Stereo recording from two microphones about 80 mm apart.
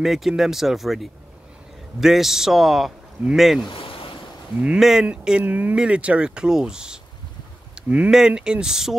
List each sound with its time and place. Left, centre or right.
0.0 s speech: centre
4.7 s speech: centre
7.7 s a sound: centre
8.1 s speech: centre